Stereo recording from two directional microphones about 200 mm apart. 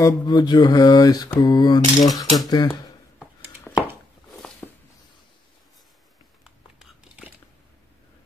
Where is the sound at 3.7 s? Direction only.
Centre (ahead or behind).